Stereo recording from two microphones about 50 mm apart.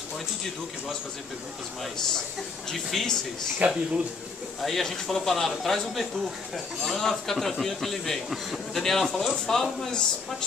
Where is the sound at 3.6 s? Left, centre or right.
Right.